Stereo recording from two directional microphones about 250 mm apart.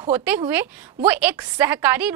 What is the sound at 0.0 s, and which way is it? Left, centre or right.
A woman's voice, centre.